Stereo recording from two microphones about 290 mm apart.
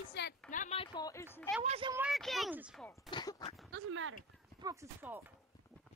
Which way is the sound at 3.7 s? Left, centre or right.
Right.